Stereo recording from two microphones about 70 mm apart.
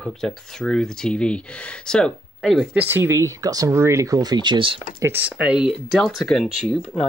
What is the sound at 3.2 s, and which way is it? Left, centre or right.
Speech, right.